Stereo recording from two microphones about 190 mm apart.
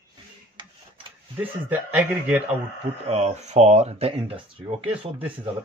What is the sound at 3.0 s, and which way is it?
Speech, 35° right (ahead or behind).